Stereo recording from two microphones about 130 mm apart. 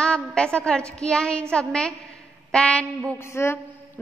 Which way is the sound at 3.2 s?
20° left (ahead or behind).